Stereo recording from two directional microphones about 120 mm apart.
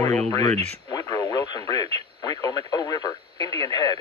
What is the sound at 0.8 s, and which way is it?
Radio, 30° left (ahead or behind).